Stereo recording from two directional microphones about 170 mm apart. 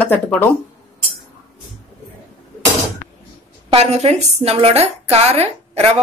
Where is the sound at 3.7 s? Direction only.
40° right (ahead or behind).